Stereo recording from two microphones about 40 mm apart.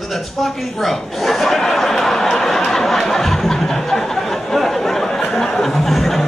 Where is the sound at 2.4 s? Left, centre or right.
Centre.